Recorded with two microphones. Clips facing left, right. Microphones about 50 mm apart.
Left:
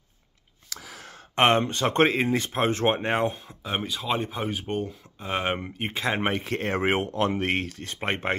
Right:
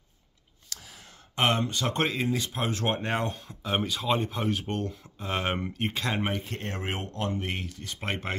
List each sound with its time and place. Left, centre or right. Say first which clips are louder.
0.8 s gasp: left 7 dB; left
1.3 s speech: left 5 dB; left
3.4 s speech: right 1 dB; centre
6.4 s speech: left 9 dB; left
7.8 s speech: left 5 dB; left